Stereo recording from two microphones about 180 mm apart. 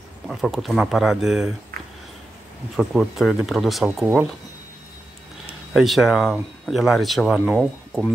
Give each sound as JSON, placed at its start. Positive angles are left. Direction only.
{"t": 0.3, "sound": "speech", "side_deg": 0}
{"t": 1.7, "sound": "a sound", "side_deg": -55}
{"t": 2.7, "sound": "speech", "side_deg": 0}
{"t": 5.7, "sound": "speech", "side_deg": 0}